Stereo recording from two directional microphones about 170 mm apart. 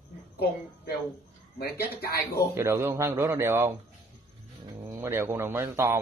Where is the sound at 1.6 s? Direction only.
65° left (ahead or behind).